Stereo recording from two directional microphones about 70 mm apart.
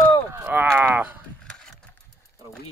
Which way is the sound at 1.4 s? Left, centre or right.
Centre.